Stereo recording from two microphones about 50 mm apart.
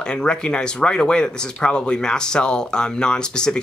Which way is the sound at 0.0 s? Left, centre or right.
Centre.